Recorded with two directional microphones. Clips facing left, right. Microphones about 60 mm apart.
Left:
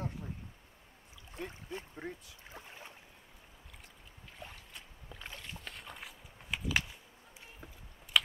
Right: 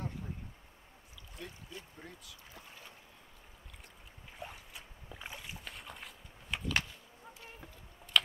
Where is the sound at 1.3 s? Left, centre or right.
Left.